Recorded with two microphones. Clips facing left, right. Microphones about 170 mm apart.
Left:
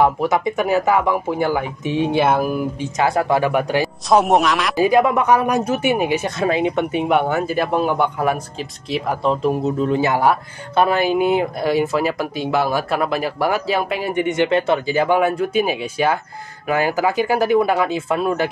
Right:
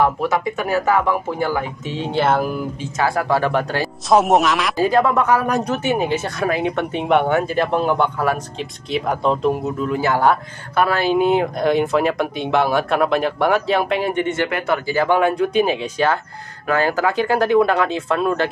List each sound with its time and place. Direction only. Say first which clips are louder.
0.0 s speech: left 2 dB; 15° left (ahead or behind)
4.1 s speech: even; centre (ahead or behind)
4.7 s speech: left 2 dB; 15° left (ahead or behind)
8.5 s speech: right 1 dB; centre (ahead or behind)
9.8 s speech: left 2 dB; 25° left (ahead or behind)
15.1 s speech: right 1 dB; 5° left (ahead or behind)